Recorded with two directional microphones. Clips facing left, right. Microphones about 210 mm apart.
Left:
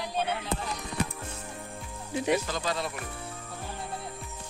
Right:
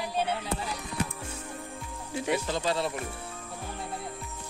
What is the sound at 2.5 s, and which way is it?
Speech, 25° right (ahead or behind).